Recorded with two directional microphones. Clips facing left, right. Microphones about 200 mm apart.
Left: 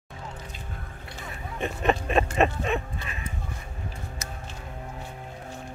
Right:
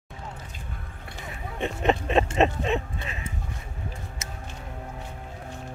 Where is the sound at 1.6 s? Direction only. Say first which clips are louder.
Right 1 dB; 20° right (ahead or behind).